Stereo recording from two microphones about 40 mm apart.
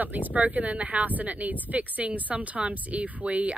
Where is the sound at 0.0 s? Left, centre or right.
Right.